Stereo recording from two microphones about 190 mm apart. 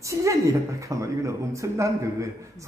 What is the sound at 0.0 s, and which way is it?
A woman's voice, 15° right (ahead or behind).